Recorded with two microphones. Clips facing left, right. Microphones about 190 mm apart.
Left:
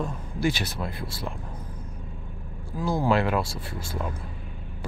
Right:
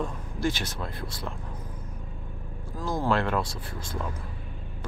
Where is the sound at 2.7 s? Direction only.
10° left (ahead or behind).